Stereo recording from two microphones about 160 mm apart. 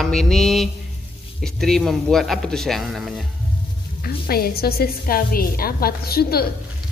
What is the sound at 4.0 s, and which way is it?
A woman's voice, 70° left (ahead or behind).